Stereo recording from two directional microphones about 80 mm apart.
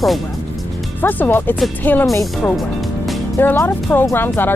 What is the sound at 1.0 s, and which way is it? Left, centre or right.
Speech, left.